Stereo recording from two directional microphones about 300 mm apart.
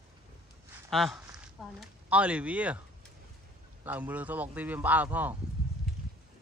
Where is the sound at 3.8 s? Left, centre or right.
Centre.